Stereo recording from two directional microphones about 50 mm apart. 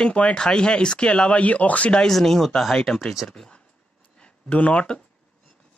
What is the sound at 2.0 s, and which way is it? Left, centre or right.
Speech, centre.